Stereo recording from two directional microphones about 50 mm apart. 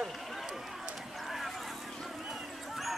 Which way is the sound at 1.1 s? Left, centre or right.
Centre.